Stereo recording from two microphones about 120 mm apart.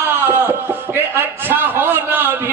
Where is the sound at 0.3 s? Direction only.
15° right (ahead or behind).